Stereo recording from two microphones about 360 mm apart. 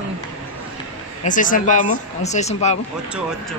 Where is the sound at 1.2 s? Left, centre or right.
Left.